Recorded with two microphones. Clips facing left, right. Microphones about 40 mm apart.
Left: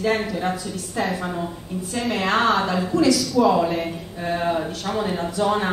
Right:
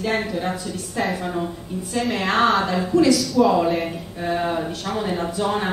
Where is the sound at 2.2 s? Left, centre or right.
Right.